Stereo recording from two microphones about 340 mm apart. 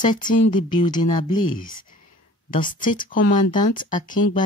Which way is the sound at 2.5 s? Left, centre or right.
Left.